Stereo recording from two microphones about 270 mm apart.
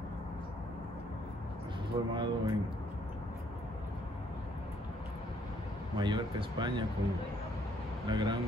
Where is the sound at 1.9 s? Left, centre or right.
Centre.